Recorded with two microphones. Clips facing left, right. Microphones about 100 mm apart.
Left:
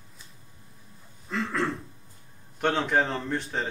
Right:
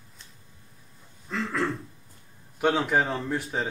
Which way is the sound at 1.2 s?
Centre (ahead or behind).